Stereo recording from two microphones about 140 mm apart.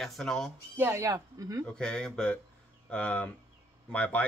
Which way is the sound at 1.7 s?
5° left (ahead or behind).